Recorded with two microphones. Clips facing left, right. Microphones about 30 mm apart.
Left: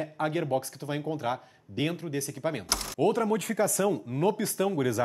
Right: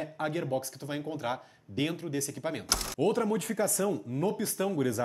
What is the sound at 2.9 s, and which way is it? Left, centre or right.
Speech, left.